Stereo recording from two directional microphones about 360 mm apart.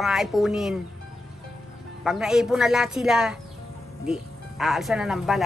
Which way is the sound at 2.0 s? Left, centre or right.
Centre.